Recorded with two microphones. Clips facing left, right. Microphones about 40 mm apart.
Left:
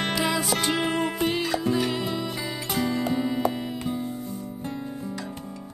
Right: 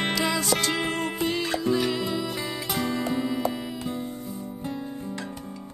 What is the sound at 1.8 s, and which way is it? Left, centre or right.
Music, centre.